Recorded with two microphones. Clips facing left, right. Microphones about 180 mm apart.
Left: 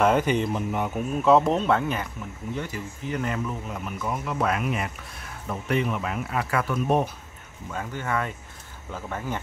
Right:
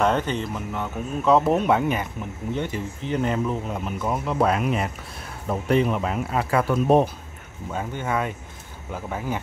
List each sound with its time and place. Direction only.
0.0 s speech: 10° left (ahead or behind)
1.2 s speech: centre (ahead or behind); by 7.1 s 30° right (ahead or behind)
7.7 s speech: 20° right (ahead or behind)